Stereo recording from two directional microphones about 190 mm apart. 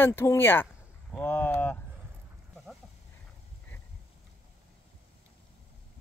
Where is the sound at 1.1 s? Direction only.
10° left (ahead or behind).